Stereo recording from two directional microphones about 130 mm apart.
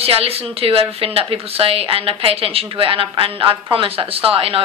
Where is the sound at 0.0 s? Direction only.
50° right (ahead or behind).